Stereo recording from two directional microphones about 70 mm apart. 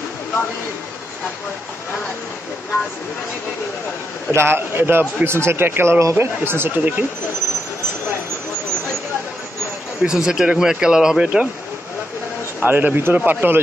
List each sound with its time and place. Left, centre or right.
4.3 s a man's voice: right
6.8 s a man's voice: right
10.0 s speech: centre
12.5 s a man's voice: right